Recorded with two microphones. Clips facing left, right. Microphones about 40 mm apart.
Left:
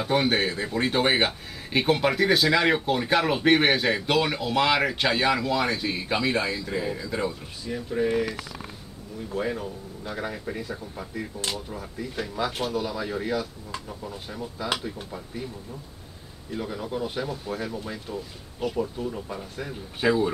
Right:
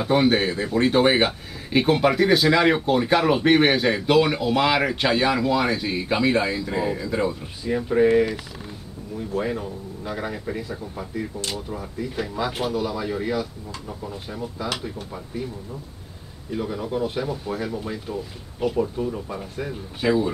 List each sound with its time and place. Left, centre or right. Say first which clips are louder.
0.0 s speech: right 4 dB; centre
7.7 s speech: right 7 dB; right
9.3 s speech: right 2 dB; centre
16.5 s speech: right 4 dB; centre
20.0 s speech: right 1 dB; centre